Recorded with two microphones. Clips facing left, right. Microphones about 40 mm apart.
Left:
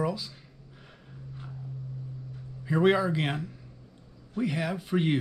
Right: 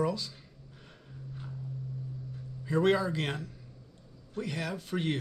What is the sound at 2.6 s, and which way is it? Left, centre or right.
A man's voice, centre.